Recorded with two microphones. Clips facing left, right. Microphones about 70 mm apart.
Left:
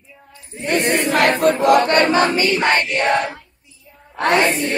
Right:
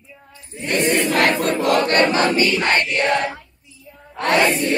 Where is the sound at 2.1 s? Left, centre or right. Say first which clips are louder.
Left 2 dB; left.